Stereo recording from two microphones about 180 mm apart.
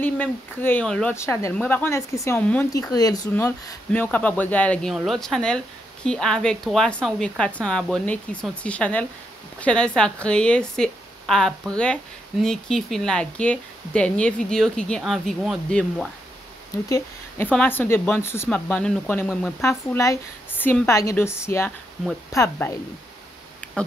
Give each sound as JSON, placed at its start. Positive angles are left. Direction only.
{"t": 0.0, "sound": "speech", "side_deg": 10}
{"t": 2.7, "sound": "a woman's voice", "side_deg": 20}
{"t": 16.9, "sound": "speech", "side_deg": 10}